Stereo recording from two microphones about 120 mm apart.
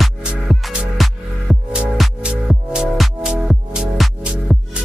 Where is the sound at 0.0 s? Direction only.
5° right (ahead or behind).